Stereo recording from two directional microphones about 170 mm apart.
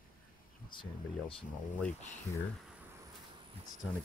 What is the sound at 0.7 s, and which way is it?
Speech, 30° left (ahead or behind).